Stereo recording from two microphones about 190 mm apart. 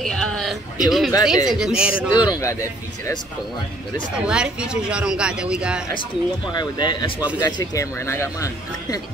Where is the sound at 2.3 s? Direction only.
15° left (ahead or behind).